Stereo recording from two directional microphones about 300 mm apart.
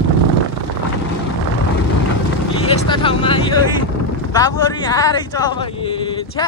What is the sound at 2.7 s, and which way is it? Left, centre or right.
Vehicle, centre.